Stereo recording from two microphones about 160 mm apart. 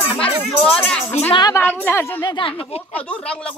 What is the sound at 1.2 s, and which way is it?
Speech, 45° left (ahead or behind).